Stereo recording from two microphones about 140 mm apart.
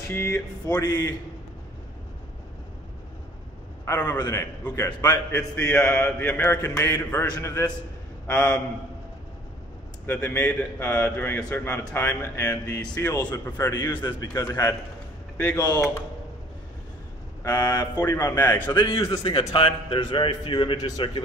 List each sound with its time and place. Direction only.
0.1 s a man's voice: 20° left (ahead or behind)
3.8 s a man's voice: 15° left (ahead or behind)
5.7 s a man's voice: 10° left (ahead or behind)
7.2 s a man's voice: 30° left (ahead or behind)
8.3 s a man's voice: 5° left (ahead or behind)
10.0 s a man's voice: 10° left (ahead or behind)
14.2 s a man's voice: 25° left (ahead or behind)
17.4 s a man's voice: 15° left (ahead or behind)
18.7 s a man's voice: 30° left (ahead or behind)